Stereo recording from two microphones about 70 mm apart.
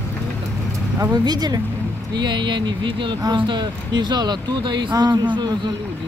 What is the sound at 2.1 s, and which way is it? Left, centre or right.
Speech, right.